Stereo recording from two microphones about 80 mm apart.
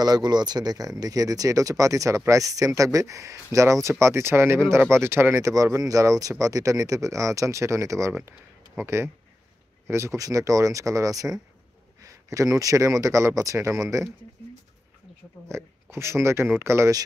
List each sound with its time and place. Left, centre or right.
0.0 s speech: right
5.4 s speech: right
15.4 s speech: right